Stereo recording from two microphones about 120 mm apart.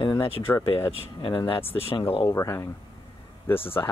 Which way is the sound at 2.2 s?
20° left (ahead or behind).